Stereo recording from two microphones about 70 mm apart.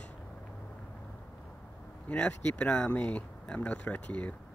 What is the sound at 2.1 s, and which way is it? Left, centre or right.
Speech, left.